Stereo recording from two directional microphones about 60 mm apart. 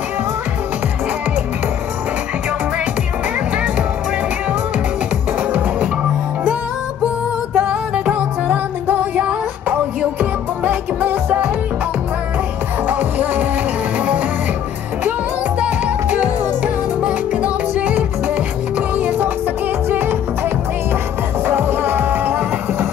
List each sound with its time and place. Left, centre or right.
7.5 s music: centre
12.8 s music: right
15.6 s music: right
21.5 s music: right